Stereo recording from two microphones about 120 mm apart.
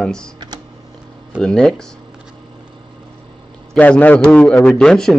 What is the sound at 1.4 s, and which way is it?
Speech, centre (ahead or behind).